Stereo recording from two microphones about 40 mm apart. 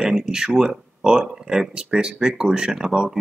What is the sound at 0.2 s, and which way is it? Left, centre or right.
Speech, centre.